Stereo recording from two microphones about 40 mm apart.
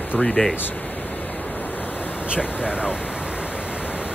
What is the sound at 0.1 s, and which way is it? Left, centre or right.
Speech, left.